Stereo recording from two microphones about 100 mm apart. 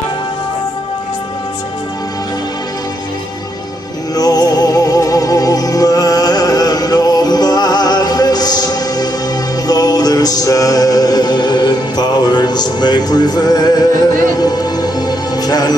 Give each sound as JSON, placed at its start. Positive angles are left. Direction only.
{"t": 4.1, "sound": "music", "side_deg": 40}